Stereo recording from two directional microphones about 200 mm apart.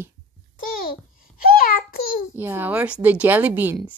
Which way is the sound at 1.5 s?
50° left (ahead or behind).